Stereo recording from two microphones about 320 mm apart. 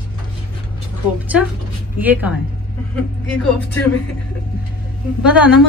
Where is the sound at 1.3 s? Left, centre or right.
Centre.